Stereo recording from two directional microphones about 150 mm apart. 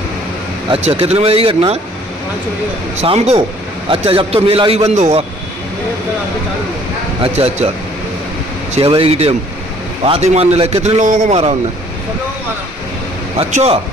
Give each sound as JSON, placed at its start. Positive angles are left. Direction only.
{"t": 0.7, "sound": "speech", "side_deg": -45}
{"t": 3.0, "sound": "a man's voice", "side_deg": -45}
{"t": 7.3, "sound": "a man's voice", "side_deg": -45}
{"t": 8.7, "sound": "a man's voice", "side_deg": -40}
{"t": 13.4, "sound": "a man's voice", "side_deg": -45}